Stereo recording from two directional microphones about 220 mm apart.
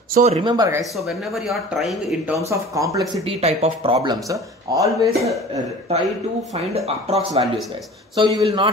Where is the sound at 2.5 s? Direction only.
15° right (ahead or behind).